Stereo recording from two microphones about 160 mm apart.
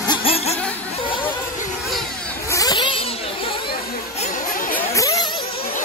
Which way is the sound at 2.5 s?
25° left (ahead or behind).